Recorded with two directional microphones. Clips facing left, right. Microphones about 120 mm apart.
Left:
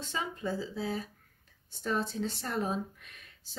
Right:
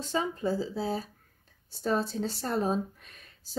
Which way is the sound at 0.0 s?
35° right (ahead or behind).